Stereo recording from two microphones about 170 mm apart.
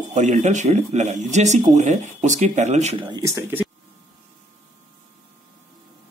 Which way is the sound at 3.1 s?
20° right (ahead or behind).